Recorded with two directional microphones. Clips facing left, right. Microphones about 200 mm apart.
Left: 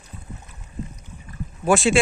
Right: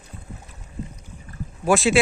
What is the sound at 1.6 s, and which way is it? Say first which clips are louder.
Speech: even; centre (ahead or behind).